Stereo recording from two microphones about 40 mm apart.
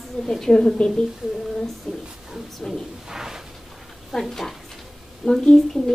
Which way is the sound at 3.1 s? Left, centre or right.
Centre.